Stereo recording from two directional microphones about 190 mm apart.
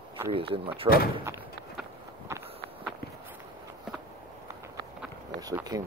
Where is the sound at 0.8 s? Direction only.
50° left (ahead or behind).